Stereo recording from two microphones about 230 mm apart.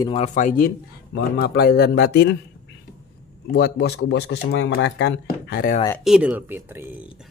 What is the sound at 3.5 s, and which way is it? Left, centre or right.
Speech, left.